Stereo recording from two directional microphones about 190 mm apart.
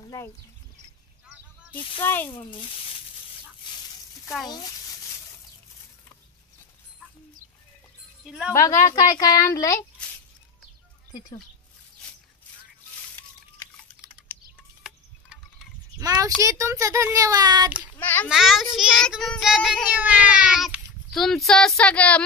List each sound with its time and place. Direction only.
0.0 s a sound: 15° left (ahead or behind)
2.0 s speech: 10° left (ahead or behind)
3.6 s a sound: 25° left (ahead or behind)
8.3 s child singing: 5° right (ahead or behind)
8.5 s speech: 15° left (ahead or behind)
11.1 s speech: 20° left (ahead or behind)
14.8 s insect: centre (ahead or behind)
16.0 s a child's voice: 20° right (ahead or behind)
17.9 s a child's voice: 10° left (ahead or behind)
18.3 s child singing: centre (ahead or behind)